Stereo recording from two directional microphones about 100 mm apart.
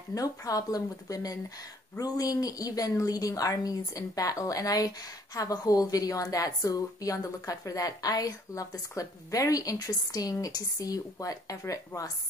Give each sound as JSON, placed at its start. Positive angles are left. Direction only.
{"t": 0.1, "sound": "a woman's voice", "side_deg": 35}